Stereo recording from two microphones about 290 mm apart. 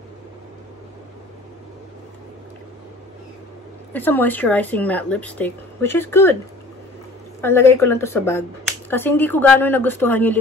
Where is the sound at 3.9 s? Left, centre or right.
Centre.